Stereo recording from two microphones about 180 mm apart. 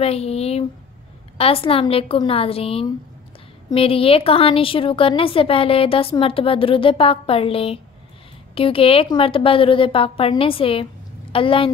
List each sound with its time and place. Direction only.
0.0 s a woman's voice: 35° left (ahead or behind)